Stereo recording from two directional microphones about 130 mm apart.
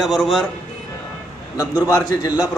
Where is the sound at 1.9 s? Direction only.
30° left (ahead or behind).